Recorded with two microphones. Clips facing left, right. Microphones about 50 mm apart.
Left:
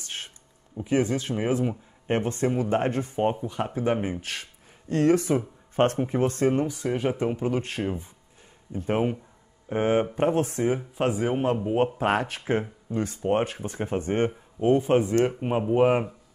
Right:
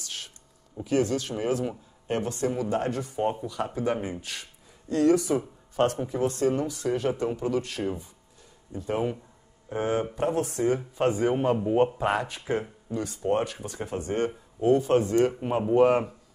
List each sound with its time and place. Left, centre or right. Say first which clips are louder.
0.0 s a sound: left 2 dB; left
0.8 s speech: left 1 dB; left
4.2 s speech: left 3 dB; left
6.6 s speech: left 1 dB; left
7.6 s speech: left 1 dB; left
10.8 s speech: right 1 dB; centre
11.8 s speech: left 1 dB; left; by 16.2 s centre